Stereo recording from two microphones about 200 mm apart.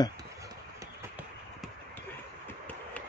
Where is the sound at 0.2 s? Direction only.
15° right (ahead or behind).